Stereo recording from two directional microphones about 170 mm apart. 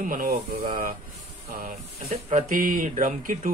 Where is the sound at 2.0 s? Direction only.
45° right (ahead or behind).